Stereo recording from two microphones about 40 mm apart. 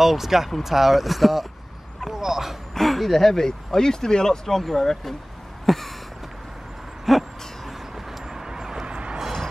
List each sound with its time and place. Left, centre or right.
0.0 s speech: centre
2.7 s speech: centre
7.1 s a sound: centre
8.8 s vehicle: right